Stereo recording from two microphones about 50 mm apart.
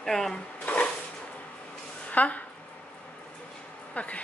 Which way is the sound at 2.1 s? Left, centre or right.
Left.